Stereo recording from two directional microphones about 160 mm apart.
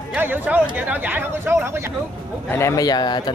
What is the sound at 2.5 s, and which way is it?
Speech, 20° left (ahead or behind).